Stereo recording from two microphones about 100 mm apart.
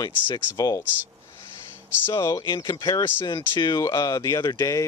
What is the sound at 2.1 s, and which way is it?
Speech, 45° left (ahead or behind).